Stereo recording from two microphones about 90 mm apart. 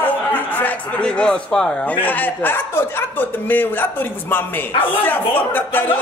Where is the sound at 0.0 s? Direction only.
20° left (ahead or behind).